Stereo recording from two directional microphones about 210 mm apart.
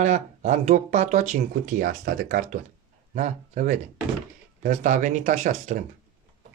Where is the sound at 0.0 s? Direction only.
35° right (ahead or behind).